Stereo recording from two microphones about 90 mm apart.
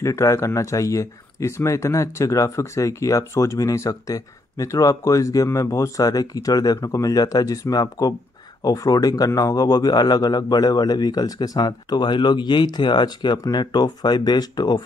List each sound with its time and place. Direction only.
0.0 s speech: 35° left (ahead or behind); by 14.8 s 50° left (ahead or behind)